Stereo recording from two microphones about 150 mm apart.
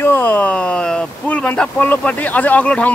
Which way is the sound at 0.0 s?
15° left (ahead or behind).